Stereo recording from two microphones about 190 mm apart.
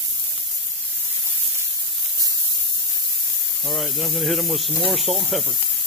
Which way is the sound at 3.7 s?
Centre (ahead or behind).